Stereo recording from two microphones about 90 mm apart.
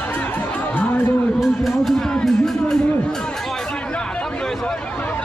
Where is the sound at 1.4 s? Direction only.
Centre (ahead or behind).